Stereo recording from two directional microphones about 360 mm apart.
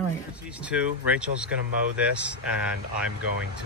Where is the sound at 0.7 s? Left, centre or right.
Centre.